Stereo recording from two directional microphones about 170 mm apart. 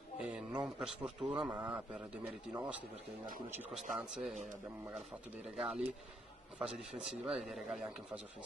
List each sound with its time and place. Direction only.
0.2 s a sound: 5° right (ahead or behind)
1.0 s a man's voice: 5° right (ahead or behind)
4.4 s speech: 45° right (ahead or behind)
5.6 s a man's voice: 5° right (ahead or behind)